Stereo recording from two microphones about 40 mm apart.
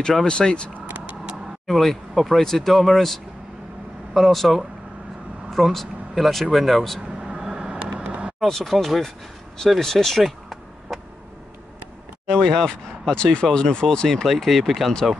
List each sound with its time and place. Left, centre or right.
0.1 s speech: centre
1.3 s speech: centre
7.1 s a sound: right
7.5 s vehicle: right
8.4 s speech: centre
10.2 s a sound: centre
12.4 s speech: centre
13.1 s speech: left
14.0 s speech: centre